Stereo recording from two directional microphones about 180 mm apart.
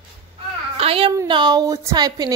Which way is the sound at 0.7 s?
30° right (ahead or behind).